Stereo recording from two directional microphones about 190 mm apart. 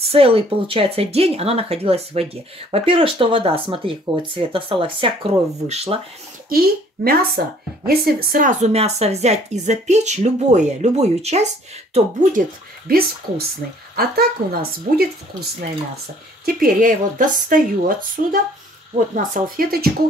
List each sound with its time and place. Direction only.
0.0 s a woman's voice: 30° right (ahead or behind)
6.5 s a woman's voice: 50° right (ahead or behind)
15.3 s speech: 25° right (ahead or behind)
16.4 s speech: 50° right (ahead or behind)